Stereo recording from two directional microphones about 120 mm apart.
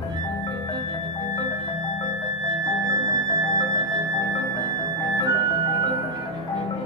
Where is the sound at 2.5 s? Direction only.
35° right (ahead or behind).